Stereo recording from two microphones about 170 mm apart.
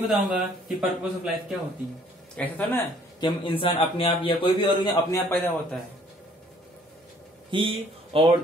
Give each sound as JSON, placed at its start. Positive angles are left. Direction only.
{"t": 0.1, "sound": "speech", "side_deg": 0}
{"t": 2.3, "sound": "speech", "side_deg": 10}
{"t": 3.2, "sound": "a man's voice", "side_deg": 25}
{"t": 5.3, "sound": "speech", "side_deg": 10}
{"t": 7.5, "sound": "a man's voice", "side_deg": -30}